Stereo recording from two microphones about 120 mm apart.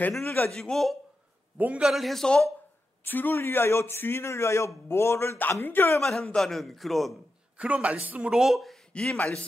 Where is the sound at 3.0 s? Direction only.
15° left (ahead or behind).